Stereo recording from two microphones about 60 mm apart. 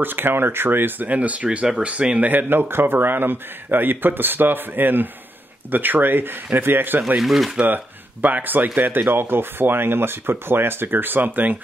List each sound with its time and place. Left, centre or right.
0.0 s speech: right
7.2 s speech: centre
7.6 s speech: right